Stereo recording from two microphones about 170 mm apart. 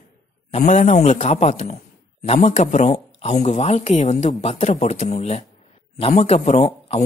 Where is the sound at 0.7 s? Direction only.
45° left (ahead or behind).